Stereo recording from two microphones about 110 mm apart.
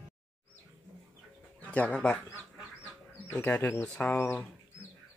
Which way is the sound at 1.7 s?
10° left (ahead or behind).